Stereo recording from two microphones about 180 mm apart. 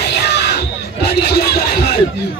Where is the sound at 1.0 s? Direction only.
60° left (ahead or behind).